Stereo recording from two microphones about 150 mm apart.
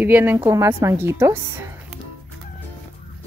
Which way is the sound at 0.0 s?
10° right (ahead or behind).